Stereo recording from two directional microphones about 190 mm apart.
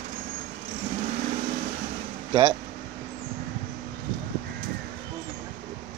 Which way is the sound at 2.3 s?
25° right (ahead or behind).